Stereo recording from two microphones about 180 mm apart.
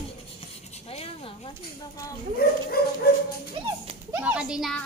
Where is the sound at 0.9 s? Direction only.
35° left (ahead or behind).